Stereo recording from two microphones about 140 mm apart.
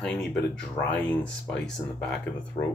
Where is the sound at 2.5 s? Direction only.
40° left (ahead or behind).